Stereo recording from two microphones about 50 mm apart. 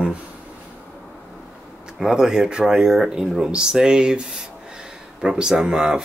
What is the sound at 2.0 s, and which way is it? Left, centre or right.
Speech, centre.